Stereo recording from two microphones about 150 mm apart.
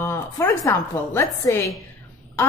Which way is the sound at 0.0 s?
15° left (ahead or behind).